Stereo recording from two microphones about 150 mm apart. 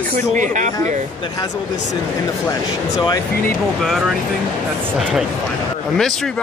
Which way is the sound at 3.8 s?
Centre (ahead or behind).